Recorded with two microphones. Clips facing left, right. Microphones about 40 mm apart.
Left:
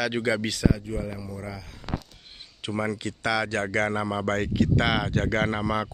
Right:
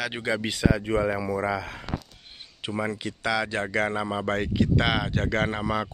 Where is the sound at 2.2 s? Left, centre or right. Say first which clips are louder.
Even; centre.